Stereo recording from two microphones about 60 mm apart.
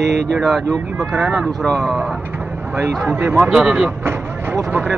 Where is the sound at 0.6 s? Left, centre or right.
Right.